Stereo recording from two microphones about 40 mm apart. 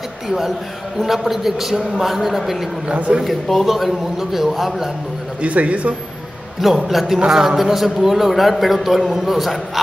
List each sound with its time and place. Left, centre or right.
0.3 s a man's voice: centre
2.9 s speech: right
3.3 s a man's voice: centre
5.4 s speech: right
6.9 s a man's voice: centre